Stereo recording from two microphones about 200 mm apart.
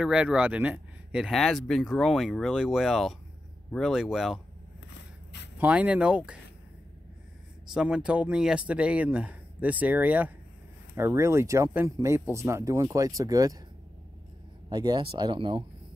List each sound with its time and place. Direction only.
0.0 s speech: 5° right (ahead or behind)
5.6 s speech: 5° right (ahead or behind)
7.7 s speech: 5° right (ahead or behind)
14.7 s speech: 20° right (ahead or behind)